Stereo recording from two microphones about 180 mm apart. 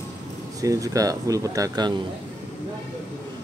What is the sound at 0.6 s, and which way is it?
Speech, 20° right (ahead or behind).